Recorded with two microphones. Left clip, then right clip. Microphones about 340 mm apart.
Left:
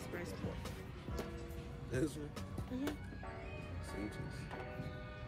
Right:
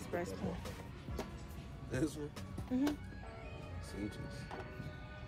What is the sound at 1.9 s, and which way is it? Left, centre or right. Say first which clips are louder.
Speech: right 1 dB; right.